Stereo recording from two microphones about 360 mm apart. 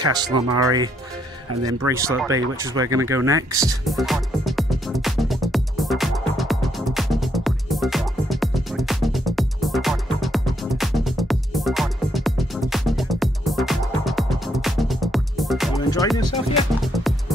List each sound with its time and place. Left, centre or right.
0.0 s speech: centre
1.5 s speech: right
1.9 s a sound: centre
15.7 s music: centre
16.8 s music: centre